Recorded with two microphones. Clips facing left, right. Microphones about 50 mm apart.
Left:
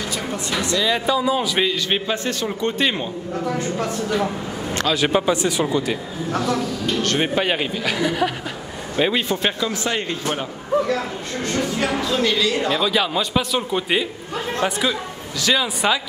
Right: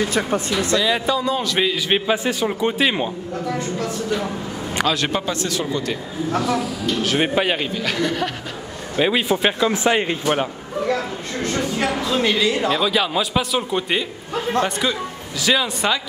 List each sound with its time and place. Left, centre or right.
0.0 s speech: right
0.7 s a man's voice: centre
1.7 s a man's voice: centre
4.9 s speech: centre
6.3 s a man's voice: centre
7.5 s a man's voice: centre
8.9 s a man's voice: centre
9.6 s speech: right
12.0 s speech: centre
12.5 s a man's voice: centre